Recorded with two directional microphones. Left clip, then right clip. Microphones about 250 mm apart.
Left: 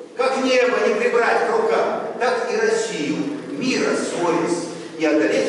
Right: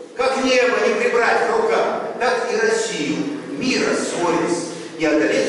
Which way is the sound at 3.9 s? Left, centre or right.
Centre.